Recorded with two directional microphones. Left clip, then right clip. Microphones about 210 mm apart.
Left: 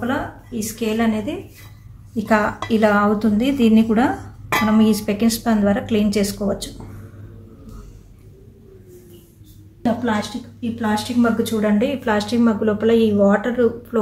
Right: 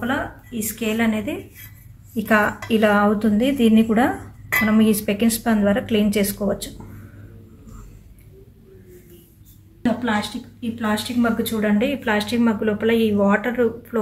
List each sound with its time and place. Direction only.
0.0 s a woman's voice: centre (ahead or behind)
2.1 s speech: 15° right (ahead or behind)
9.8 s a woman's voice: centre (ahead or behind)